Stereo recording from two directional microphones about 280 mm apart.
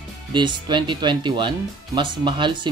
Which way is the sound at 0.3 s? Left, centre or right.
Centre.